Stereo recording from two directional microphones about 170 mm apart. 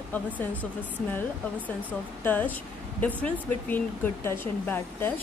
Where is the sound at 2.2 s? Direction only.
10° left (ahead or behind).